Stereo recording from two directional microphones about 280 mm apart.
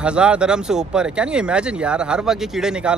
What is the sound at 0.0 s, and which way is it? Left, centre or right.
Speech, centre.